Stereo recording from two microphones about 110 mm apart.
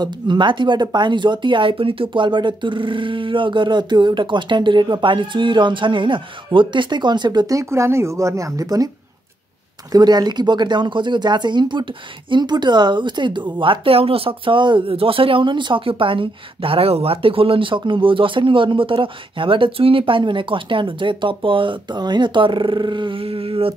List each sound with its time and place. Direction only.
0.0 s speech: 45° right (ahead or behind)
9.9 s speech: 40° right (ahead or behind); by 23.7 s 55° right (ahead or behind)